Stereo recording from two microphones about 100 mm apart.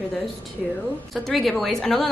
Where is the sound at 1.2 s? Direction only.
Centre (ahead or behind).